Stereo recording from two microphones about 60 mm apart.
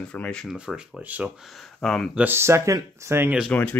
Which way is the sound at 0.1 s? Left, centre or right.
Centre.